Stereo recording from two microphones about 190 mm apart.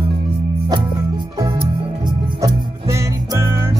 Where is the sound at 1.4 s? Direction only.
20° right (ahead or behind).